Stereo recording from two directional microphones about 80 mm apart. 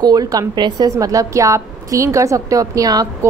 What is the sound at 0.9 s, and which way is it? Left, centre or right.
A woman's voice, right.